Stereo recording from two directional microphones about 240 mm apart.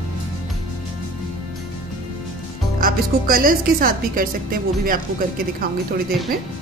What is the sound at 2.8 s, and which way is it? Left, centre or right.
A woman's voice, right.